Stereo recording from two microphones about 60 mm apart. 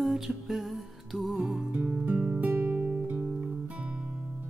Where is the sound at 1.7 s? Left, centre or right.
Right.